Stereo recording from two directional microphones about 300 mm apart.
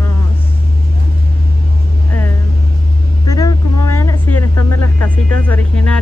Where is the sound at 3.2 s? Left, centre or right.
Centre.